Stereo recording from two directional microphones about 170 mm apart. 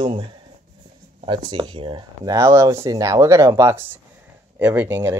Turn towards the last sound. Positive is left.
turn(degrees=-15)  # may be behind; listen again after turning